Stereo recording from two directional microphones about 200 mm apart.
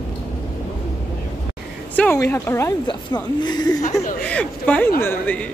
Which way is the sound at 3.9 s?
5° left (ahead or behind).